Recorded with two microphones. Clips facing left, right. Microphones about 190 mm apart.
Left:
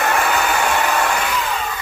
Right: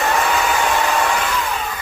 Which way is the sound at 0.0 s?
Centre (ahead or behind).